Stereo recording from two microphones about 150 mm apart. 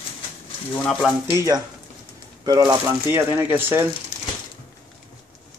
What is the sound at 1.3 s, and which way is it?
Speech, 20° right (ahead or behind).